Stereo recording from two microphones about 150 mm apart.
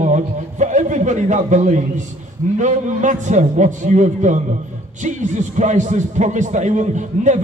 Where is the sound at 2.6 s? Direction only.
55° right (ahead or behind).